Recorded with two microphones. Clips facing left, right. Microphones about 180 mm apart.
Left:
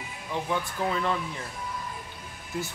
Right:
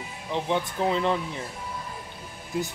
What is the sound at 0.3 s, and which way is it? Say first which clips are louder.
Speech: right 3 dB; 20° right (ahead or behind).